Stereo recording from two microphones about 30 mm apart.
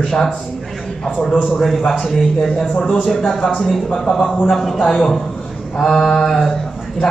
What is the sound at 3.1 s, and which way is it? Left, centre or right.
Speech, centre.